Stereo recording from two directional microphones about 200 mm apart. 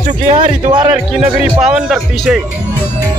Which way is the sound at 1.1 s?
Centre (ahead or behind).